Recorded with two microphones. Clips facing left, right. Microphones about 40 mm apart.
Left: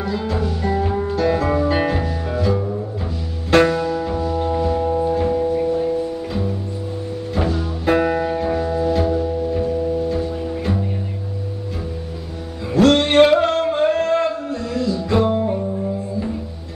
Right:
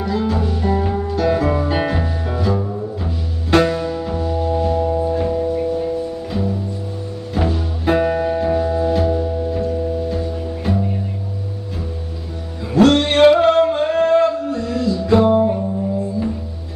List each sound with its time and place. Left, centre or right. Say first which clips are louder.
0.0 s music: right 2 dB; centre
7.9 s music: right 1 dB; centre
12.7 s music: even; centre
13.4 s singing: right 5 dB; centre
13.7 s a sound: right 2 dB; centre
14.2 s music: right 4 dB; centre